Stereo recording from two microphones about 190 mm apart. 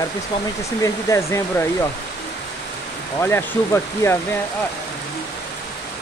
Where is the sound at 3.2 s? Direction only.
10° left (ahead or behind).